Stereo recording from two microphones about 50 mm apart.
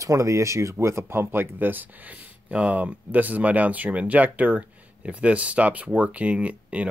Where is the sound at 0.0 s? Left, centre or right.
Right.